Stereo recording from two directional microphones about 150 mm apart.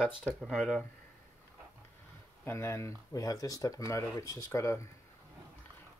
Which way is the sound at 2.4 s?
15° left (ahead or behind).